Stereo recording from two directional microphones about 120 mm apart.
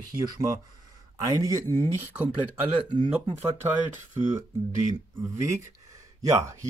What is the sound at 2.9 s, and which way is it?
Speech, 40° right (ahead or behind).